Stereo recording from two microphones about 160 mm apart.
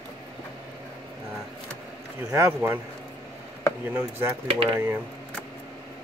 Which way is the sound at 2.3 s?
10° right (ahead or behind).